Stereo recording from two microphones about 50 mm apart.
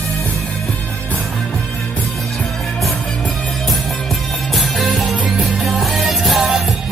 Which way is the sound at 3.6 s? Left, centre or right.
Centre.